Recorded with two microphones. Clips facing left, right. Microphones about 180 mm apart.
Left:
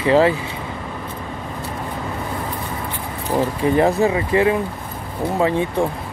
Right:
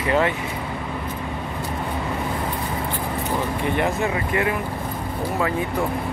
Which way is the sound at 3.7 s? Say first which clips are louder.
Left 8 dB; 35° left (ahead or behind).